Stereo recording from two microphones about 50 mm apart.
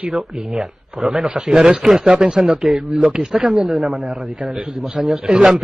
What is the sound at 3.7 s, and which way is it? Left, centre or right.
Speech, centre.